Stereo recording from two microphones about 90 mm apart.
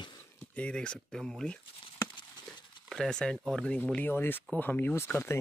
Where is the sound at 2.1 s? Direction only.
55° left (ahead or behind).